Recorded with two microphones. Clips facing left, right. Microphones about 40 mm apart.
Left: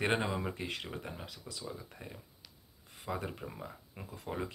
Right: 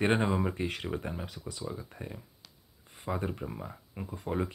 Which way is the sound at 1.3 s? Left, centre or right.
Right.